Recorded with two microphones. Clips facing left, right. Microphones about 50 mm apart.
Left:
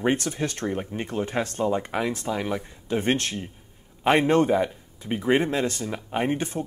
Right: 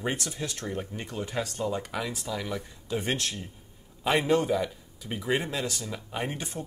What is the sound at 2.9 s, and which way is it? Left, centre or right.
Speech, left.